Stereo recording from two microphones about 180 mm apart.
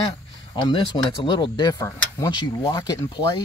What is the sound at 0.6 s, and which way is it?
Speech, 25° left (ahead or behind).